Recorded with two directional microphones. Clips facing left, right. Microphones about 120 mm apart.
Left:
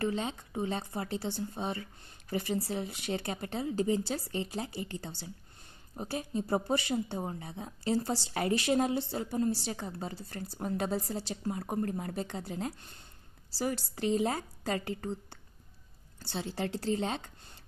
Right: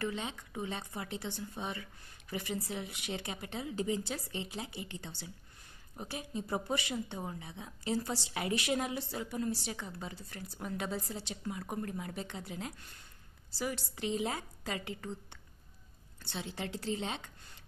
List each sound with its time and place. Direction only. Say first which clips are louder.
0.0 s a woman's voice: left 5 dB; 35° left (ahead or behind)